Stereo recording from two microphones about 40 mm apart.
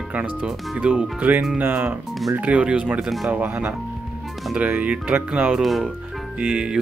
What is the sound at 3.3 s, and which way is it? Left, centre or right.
Speech, right.